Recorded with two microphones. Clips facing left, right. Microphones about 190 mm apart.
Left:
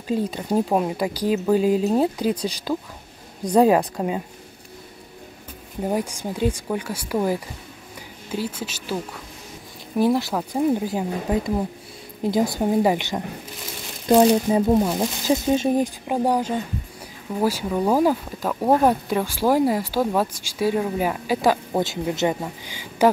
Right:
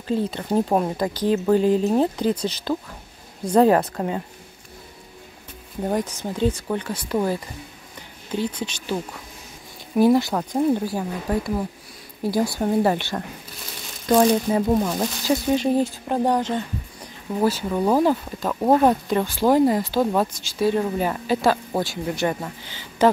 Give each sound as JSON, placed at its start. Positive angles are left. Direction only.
{"t": 0.1, "sound": "speech", "side_deg": 10}
{"t": 5.8, "sound": "speech", "side_deg": 10}
{"t": 10.9, "sound": "speech", "side_deg": 15}